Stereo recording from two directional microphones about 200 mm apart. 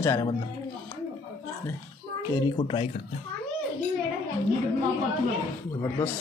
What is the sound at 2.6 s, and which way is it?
Speech, 25° left (ahead or behind).